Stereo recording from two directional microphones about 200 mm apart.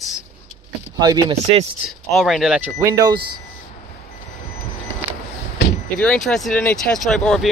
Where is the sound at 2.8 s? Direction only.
20° right (ahead or behind).